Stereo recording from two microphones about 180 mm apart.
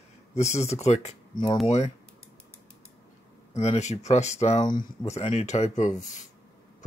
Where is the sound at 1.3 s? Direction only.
25° left (ahead or behind).